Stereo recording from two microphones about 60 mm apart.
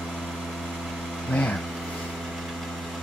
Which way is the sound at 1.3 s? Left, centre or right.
Centre.